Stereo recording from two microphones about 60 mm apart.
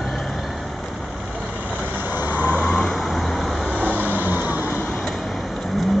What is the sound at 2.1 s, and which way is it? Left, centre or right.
Vehicle, right.